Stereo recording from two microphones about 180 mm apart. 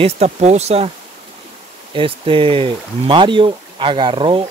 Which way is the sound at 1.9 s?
30° right (ahead or behind).